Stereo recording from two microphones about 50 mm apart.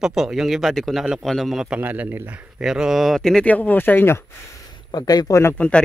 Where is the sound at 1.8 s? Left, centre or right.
Right.